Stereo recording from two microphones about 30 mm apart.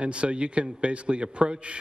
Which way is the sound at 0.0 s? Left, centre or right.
Right.